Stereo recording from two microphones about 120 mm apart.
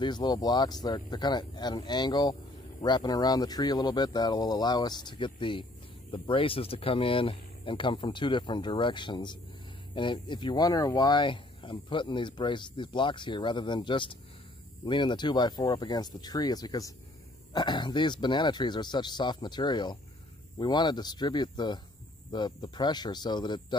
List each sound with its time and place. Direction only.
0.0 s speech: 35° left (ahead or behind)